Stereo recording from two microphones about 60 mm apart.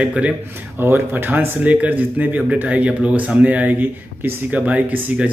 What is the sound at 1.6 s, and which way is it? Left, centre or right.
Speech, right.